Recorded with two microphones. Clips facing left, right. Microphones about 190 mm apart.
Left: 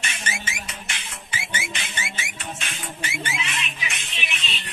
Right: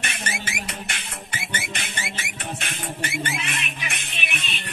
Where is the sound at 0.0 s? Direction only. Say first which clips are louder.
Right 1 dB; 60° right (ahead or behind).